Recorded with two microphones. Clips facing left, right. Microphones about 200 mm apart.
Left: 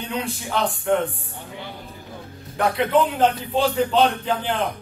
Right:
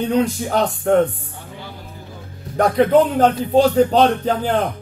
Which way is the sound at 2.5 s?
40° right (ahead or behind).